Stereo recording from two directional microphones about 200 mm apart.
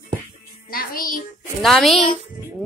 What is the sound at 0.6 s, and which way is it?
Music, 45° left (ahead or behind).